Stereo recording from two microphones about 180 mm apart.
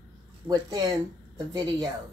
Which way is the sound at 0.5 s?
20° right (ahead or behind).